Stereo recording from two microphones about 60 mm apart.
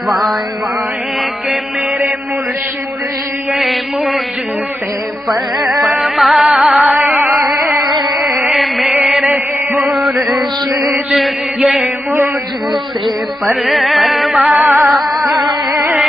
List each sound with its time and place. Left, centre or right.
0.1 s music: centre
3.5 s mantra: centre
5.8 s music: centre
7.2 s music: right
8.1 s chant: centre
9.8 s music: centre
11.1 s music: centre
13.0 s music: centre
15.7 s a sound: right